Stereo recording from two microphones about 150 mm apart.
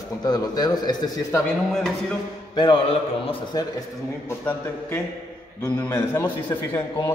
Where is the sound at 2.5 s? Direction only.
30° left (ahead or behind).